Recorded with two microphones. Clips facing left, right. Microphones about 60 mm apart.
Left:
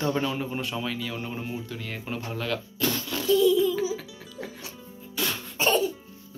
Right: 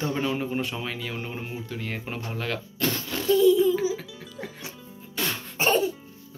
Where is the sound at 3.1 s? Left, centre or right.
Right.